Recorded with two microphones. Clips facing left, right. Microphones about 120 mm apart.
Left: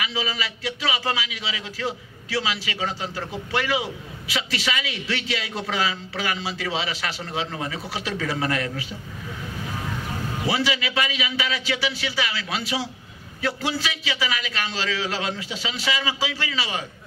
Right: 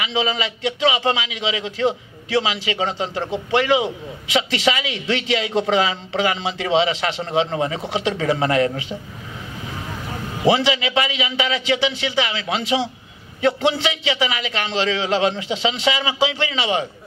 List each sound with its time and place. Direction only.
0.0 s a man's voice: 25° right (ahead or behind)
10.4 s a man's voice: 25° right (ahead or behind)